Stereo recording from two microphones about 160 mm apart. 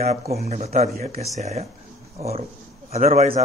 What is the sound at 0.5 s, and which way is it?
Speech, 45° right (ahead or behind).